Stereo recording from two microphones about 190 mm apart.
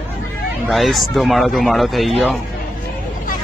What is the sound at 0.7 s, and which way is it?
Speech, centre (ahead or behind).